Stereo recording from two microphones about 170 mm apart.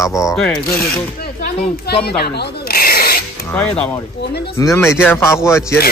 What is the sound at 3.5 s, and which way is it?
Speech, 10° left (ahead or behind).